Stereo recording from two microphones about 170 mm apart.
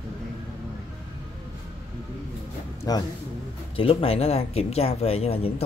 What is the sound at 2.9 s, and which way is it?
Speech, 20° left (ahead or behind).